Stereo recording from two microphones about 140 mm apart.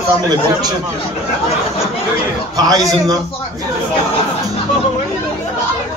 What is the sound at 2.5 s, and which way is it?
Speech, 25° right (ahead or behind).